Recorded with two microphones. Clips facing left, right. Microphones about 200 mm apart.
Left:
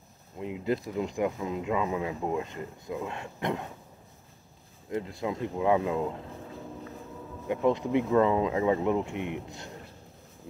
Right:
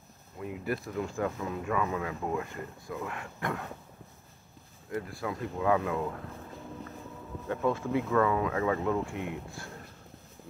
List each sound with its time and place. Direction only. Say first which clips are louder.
0.4 s speech: left 4 dB; 20° left (ahead or behind)
4.8 s speech: left 3 dB; 20° left (ahead or behind)
7.4 s speech: left 4 dB; 15° left (ahead or behind)